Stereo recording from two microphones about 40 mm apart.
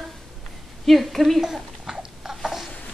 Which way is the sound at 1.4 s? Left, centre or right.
Centre.